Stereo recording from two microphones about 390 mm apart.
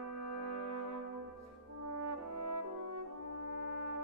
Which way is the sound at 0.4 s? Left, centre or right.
Right.